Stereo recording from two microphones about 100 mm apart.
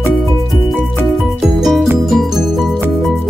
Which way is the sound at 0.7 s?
Centre (ahead or behind).